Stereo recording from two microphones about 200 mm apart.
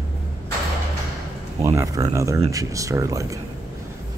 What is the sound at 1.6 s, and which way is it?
Speech, 15° right (ahead or behind).